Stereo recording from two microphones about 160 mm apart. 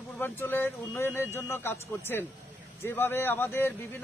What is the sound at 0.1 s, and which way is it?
A man's voice, 10° left (ahead or behind).